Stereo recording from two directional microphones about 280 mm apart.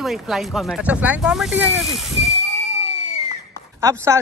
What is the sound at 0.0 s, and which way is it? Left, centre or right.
Speech, centre.